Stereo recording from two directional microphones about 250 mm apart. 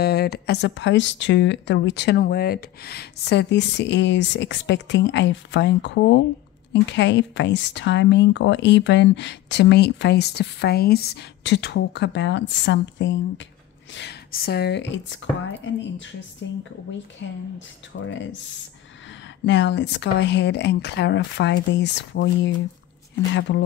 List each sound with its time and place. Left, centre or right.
0.0 s speech: left
19.4 s speech: left
23.5 s speech: left